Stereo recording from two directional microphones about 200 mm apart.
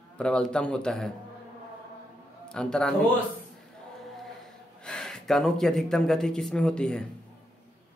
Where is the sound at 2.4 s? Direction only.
5° left (ahead or behind).